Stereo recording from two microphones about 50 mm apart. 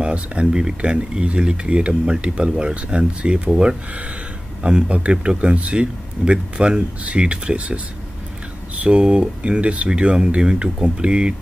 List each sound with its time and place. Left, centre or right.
0.0 s speech: right
8.8 s speech: centre